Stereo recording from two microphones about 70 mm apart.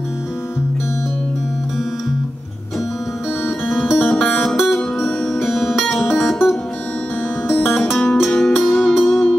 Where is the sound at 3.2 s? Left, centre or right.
Left.